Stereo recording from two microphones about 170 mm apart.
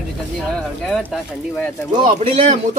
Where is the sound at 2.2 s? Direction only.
35° right (ahead or behind).